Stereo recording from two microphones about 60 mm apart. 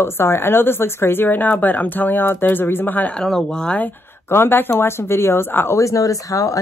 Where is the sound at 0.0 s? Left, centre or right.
Left.